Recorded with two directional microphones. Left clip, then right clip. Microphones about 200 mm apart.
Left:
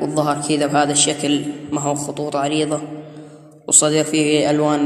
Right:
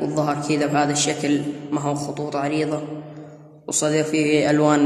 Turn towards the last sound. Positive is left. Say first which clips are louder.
# even
turn(degrees=-20)  # may be behind; listen again after turning